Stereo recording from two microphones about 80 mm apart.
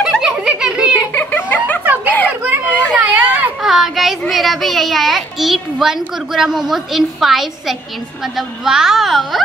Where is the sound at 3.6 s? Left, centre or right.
Centre.